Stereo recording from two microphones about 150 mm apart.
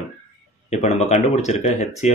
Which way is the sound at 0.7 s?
50° left (ahead or behind).